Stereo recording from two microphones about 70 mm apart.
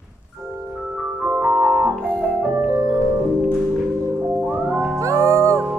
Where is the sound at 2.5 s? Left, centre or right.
Right.